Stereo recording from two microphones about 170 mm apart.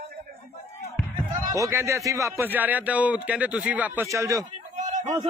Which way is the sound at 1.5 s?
15° right (ahead or behind).